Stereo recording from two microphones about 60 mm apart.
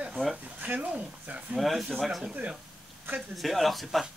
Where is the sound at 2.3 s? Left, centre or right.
Centre.